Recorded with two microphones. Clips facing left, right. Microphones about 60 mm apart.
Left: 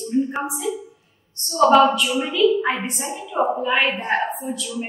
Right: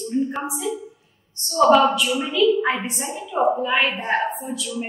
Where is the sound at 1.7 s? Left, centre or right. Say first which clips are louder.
Left 1 dB; centre.